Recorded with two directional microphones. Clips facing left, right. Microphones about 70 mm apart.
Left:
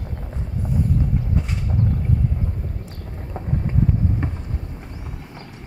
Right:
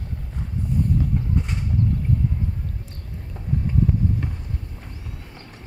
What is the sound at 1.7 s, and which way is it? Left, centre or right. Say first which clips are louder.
Vehicle: even; left.